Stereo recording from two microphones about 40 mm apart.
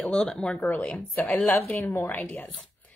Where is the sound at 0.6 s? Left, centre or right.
Left.